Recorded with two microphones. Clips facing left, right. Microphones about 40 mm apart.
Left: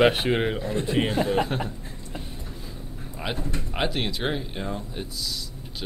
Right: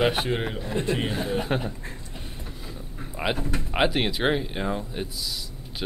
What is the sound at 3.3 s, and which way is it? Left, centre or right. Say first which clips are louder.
Speech: right 2 dB; centre.